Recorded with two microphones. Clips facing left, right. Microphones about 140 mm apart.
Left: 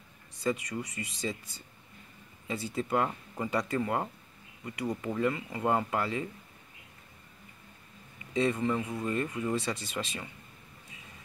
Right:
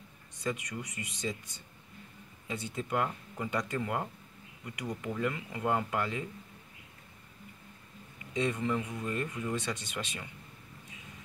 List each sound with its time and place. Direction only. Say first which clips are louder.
0.4 s speech: left 4 dB; centre (ahead or behind)
8.3 s a man's voice: left 3 dB; centre (ahead or behind)
8.7 s speech: left 2 dB; 25° left (ahead or behind)
9.0 s speech: left 3 dB; centre (ahead or behind)